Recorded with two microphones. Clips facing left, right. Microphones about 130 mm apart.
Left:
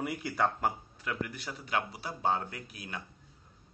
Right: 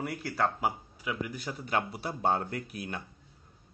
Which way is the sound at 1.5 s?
50° right (ahead or behind).